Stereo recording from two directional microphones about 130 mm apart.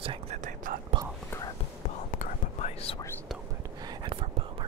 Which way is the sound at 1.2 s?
25° left (ahead or behind).